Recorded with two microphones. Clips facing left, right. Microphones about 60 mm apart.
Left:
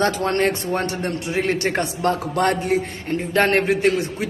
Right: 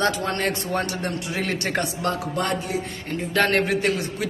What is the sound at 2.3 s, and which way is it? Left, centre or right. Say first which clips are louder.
Speech: left 6 dB; left.